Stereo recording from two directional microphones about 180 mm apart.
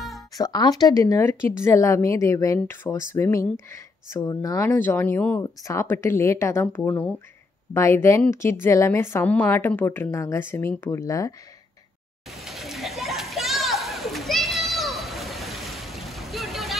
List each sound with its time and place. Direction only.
0.4 s speech: 20° left (ahead or behind)
12.3 s children playing: centre (ahead or behind)